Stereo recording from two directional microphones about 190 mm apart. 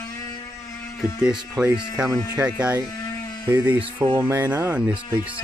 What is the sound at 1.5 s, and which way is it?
Speech, 10° right (ahead or behind).